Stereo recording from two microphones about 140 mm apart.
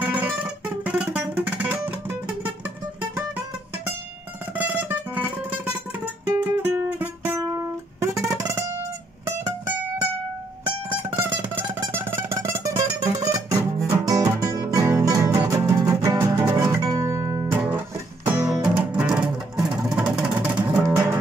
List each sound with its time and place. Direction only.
0.0 s music: 10° right (ahead or behind)
4.6 s music: 15° right (ahead or behind)
7.4 s music: 25° right (ahead or behind)
10.9 s music: 15° right (ahead or behind)
18.5 s music: 5° right (ahead or behind)
20.8 s music: 20° right (ahead or behind)